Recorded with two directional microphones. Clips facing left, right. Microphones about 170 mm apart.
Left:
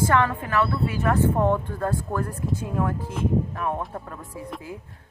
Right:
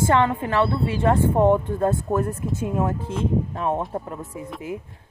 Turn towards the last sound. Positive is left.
turn(degrees=-25)  # may be behind; listen again after turning